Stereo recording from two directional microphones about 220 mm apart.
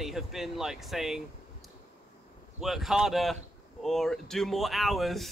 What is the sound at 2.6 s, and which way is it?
Speech, centre (ahead or behind).